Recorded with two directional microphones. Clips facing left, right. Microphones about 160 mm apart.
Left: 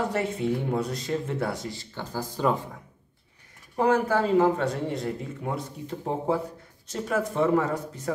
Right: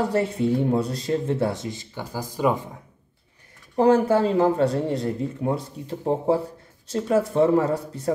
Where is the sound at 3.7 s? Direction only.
30° right (ahead or behind).